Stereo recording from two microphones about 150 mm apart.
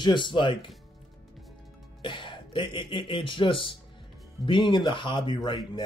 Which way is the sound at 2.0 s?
30° left (ahead or behind).